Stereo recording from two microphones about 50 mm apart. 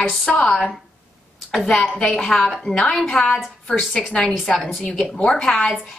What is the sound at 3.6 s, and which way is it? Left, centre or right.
Speech, centre.